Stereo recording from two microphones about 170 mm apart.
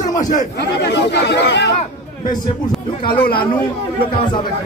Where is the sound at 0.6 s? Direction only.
85° left.